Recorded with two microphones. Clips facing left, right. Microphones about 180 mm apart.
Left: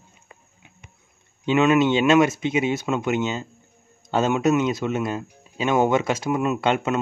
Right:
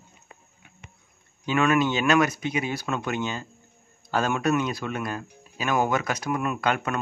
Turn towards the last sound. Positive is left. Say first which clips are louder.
# left 5 dB
turn(degrees=25)  # may be behind; listen again after turning